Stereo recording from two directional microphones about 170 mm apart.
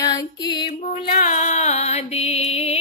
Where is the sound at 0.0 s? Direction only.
25° left (ahead or behind).